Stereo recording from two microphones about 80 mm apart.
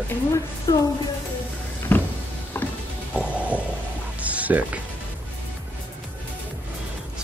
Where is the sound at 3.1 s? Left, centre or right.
Centre.